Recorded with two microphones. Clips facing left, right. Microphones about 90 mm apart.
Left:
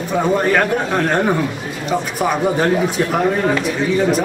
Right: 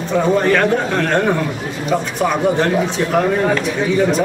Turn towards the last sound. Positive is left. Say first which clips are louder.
# even
turn(degrees=10)  # may be behind; listen again after turning